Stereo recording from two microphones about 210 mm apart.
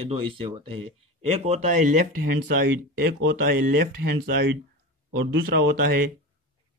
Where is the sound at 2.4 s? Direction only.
45° right (ahead or behind).